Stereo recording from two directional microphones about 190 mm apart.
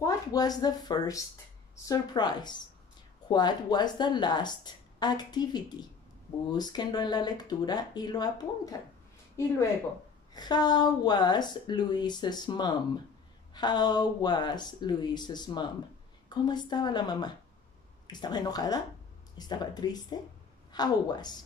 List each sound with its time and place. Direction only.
0.0 s a woman's voice: 20° left (ahead or behind)
10.3 s a woman's voice: 20° left (ahead or behind)